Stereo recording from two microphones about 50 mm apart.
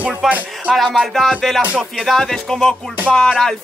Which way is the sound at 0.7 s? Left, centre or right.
Centre.